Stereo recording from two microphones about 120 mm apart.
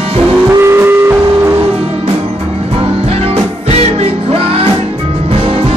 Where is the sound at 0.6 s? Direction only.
20° right (ahead or behind).